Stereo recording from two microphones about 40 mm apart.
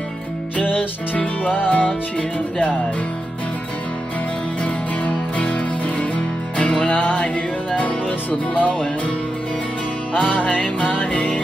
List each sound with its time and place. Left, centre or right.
0.7 s music: left
5.9 s music: left
10.2 s music: left